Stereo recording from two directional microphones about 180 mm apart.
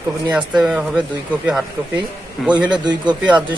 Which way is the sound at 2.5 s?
25° right (ahead or behind).